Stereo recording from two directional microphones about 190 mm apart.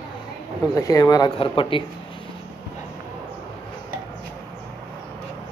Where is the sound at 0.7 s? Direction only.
20° left (ahead or behind).